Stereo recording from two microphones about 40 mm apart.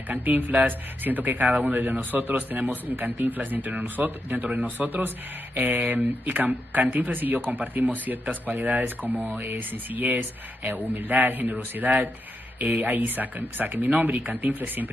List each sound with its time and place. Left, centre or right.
0.2 s speech: right